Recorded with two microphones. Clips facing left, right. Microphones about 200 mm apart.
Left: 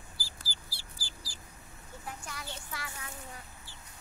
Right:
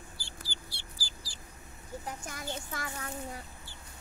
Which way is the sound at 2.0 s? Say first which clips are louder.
Right 2 dB; 45° right (ahead or behind).